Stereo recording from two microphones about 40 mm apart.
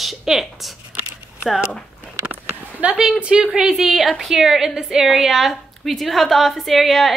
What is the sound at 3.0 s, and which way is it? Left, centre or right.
Speech, right.